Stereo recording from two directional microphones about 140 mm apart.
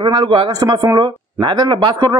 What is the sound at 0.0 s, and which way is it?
Speech, 35° right (ahead or behind).